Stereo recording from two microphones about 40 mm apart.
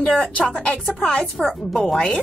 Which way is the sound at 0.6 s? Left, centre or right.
Left.